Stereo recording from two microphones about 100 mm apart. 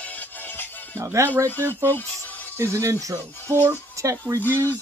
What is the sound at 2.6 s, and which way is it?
Speech, 30° right (ahead or behind).